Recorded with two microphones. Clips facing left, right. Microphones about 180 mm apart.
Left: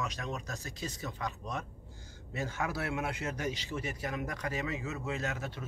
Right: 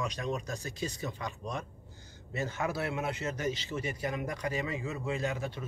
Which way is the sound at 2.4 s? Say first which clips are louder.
Right 2 dB; 10° left (ahead or behind).